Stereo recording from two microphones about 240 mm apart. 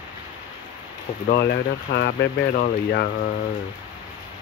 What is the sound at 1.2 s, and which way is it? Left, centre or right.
Speech, left.